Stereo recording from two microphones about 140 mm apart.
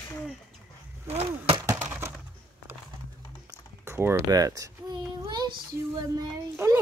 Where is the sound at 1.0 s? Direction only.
45° right (ahead or behind).